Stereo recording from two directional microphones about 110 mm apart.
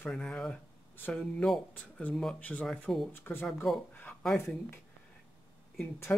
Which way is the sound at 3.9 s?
15° left (ahead or behind).